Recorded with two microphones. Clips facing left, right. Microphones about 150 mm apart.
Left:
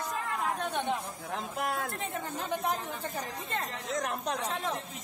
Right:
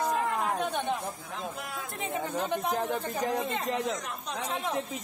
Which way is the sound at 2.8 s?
75° right (ahead or behind).